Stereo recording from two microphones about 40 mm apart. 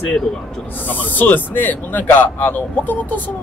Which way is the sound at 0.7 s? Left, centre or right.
Left.